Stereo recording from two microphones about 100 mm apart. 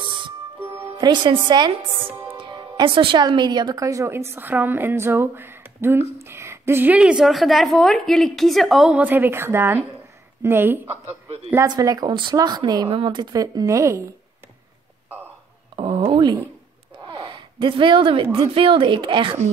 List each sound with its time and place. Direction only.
0.1 s music: 65° right (ahead or behind)
1.0 s a woman's voice: 50° right (ahead or behind); by 8.9 s centre (ahead or behind)
8.9 s speech: 20° right (ahead or behind)
11.6 s speech: 40° right (ahead or behind)
15.7 s a sound: 55° right (ahead or behind)
16.1 s speech: 50° right (ahead or behind)
17.0 s a sound: 50° right (ahead or behind)
18.5 s a woman's voice: 60° right (ahead or behind)